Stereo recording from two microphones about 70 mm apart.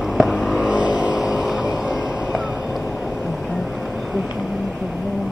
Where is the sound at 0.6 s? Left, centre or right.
Centre.